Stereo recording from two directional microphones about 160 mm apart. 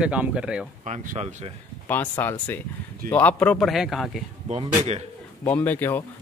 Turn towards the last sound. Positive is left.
turn(degrees=10)  # may be behind; listen again after turning